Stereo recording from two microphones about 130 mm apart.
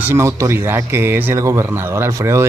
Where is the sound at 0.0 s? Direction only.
20° right (ahead or behind).